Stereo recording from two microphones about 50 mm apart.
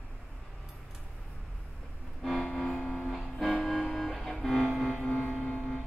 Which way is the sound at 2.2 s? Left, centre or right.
Centre.